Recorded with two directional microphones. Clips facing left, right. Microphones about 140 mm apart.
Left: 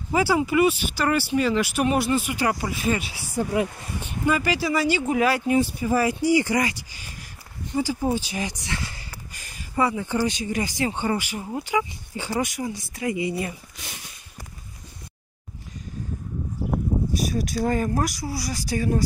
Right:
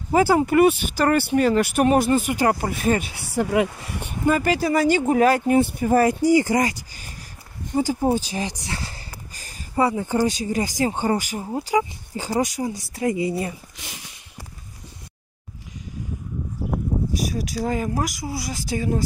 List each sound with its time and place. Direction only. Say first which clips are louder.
0.1 s speech: right 4 dB; 45° right (ahead or behind)
3.4 s speech: right 3 dB; 90° right
4.3 s speech: right 3 dB; 45° right (ahead or behind)
17.2 s speech: left 1 dB; 10° right (ahead or behind)